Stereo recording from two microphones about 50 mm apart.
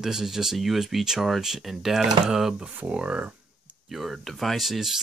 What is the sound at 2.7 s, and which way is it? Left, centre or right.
Speech, right.